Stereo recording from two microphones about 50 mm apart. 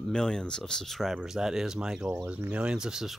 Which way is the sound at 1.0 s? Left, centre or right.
Centre.